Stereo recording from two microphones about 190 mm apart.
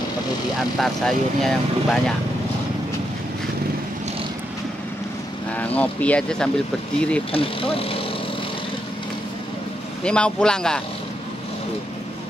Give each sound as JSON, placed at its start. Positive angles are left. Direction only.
{"t": 0.6, "sound": "speech", "side_deg": 0}
{"t": 5.5, "sound": "speech", "side_deg": 10}
{"t": 7.3, "sound": "speech", "side_deg": 30}
{"t": 10.0, "sound": "speech", "side_deg": 5}